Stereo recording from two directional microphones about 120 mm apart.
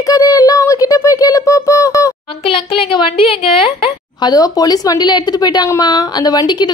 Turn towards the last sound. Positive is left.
turn(degrees=35)  # may be behind; listen again after turning